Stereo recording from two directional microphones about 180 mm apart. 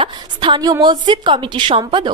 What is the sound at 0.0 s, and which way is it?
A woman's voice, 25° right (ahead or behind).